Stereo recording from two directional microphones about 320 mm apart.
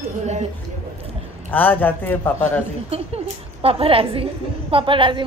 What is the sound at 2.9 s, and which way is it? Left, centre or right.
A woman's voice, centre.